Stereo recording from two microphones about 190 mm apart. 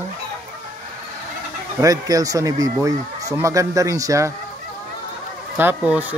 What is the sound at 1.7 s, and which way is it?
Speech, 20° right (ahead or behind).